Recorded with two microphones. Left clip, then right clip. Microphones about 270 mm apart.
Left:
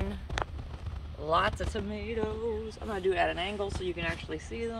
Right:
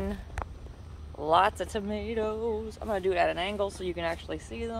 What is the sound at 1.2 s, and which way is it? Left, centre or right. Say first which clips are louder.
Speech: right 4 dB; centre.